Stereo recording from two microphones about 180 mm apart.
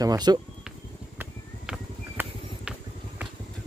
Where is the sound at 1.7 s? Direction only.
5° right (ahead or behind).